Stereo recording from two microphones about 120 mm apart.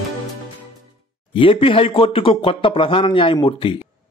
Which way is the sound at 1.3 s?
50° left (ahead or behind).